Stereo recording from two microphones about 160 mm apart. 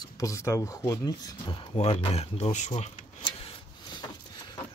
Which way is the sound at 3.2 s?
30° left (ahead or behind).